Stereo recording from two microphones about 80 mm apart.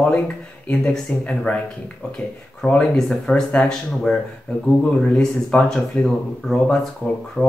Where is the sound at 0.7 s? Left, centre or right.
Centre.